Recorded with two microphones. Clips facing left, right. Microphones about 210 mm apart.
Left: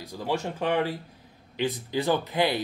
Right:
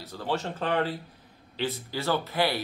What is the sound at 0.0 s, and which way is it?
Speech, 10° left (ahead or behind).